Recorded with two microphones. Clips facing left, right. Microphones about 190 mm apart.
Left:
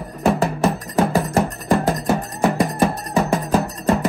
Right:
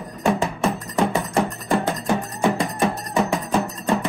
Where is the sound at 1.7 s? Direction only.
40° left (ahead or behind).